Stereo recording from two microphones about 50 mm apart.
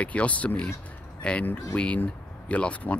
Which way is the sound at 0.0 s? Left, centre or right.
Left.